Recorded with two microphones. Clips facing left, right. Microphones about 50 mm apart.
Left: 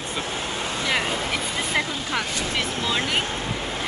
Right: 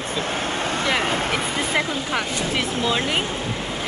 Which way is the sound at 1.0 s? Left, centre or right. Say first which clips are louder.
Right 3 dB; right.